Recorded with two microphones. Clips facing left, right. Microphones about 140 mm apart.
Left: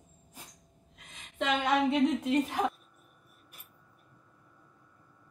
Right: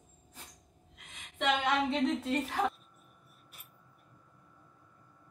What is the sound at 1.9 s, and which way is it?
Speech, 15° left (ahead or behind).